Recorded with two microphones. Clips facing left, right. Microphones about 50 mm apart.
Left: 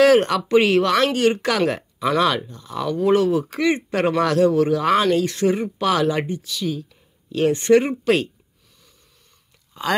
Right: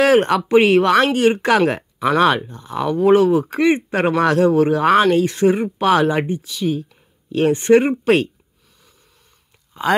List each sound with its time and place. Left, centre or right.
0.0 s speech: right
9.8 s speech: right